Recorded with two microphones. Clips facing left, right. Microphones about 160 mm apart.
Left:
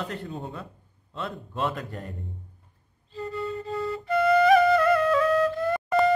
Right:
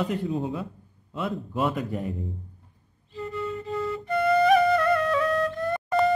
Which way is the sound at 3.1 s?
35° left (ahead or behind).